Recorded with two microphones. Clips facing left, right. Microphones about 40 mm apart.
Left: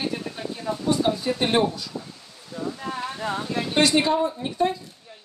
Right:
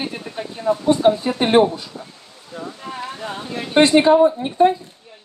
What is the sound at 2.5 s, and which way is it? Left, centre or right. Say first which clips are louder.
Speech: left 1 dB; right.